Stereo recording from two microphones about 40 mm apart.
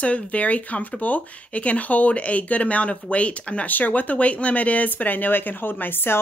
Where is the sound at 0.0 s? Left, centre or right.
Left.